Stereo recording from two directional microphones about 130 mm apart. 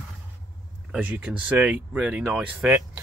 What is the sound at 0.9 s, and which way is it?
Speech, 10° right (ahead or behind).